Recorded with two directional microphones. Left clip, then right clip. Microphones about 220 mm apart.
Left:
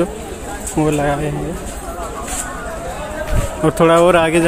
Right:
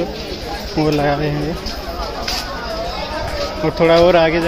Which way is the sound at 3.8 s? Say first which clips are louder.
Even; 20° left (ahead or behind).